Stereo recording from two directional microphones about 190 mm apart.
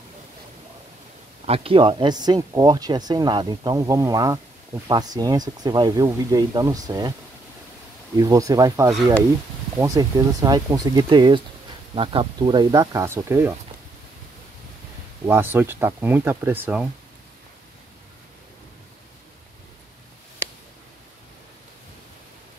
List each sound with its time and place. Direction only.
1.4 s speech: 30° right (ahead or behind)
8.2 s speech: 20° right (ahead or behind)
15.2 s speech: 10° right (ahead or behind)